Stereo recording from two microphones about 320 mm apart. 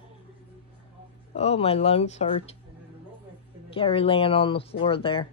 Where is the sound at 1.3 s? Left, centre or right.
Centre.